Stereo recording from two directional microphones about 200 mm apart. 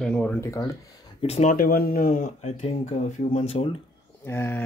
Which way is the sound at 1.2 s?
35° left (ahead or behind).